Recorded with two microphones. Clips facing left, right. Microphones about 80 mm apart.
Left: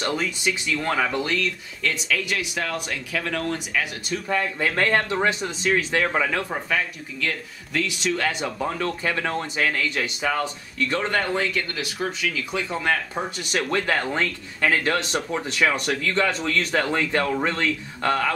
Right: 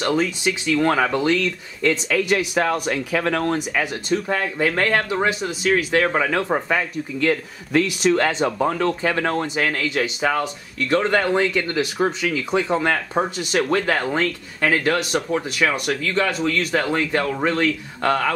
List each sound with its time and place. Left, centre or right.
0.1 s speech: right
2.2 s speech: right
4.1 s speech: right; by 6.0 s centre
6.0 s speech: centre
6.5 s speech: right
7.2 s speech: right
8.2 s speech: right
13.4 s speech: centre